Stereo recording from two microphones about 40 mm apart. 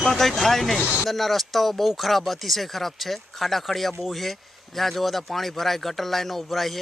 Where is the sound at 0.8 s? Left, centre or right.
Right.